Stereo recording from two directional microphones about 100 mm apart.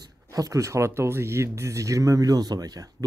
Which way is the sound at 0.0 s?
35° right (ahead or behind).